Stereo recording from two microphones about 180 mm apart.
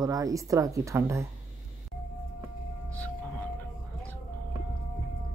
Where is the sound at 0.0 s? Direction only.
20° right (ahead or behind).